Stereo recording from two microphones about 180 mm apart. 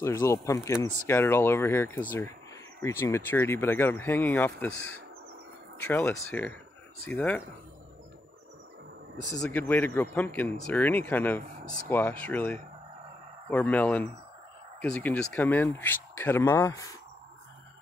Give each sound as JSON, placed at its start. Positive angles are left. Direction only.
{"t": 0.0, "sound": "speech", "side_deg": 15}
{"t": 9.4, "sound": "speech", "side_deg": 10}